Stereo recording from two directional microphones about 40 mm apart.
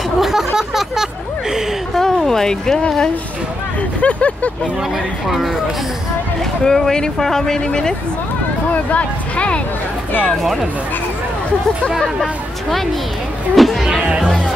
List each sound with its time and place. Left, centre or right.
0.2 s a sound: centre
2.0 s speech: centre
4.0 s speech: left
6.6 s speech: centre
8.7 s speech: left
10.2 s speech: centre
13.6 s speech: centre